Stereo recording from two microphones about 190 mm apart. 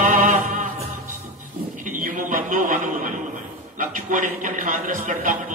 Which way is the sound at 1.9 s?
45° right (ahead or behind).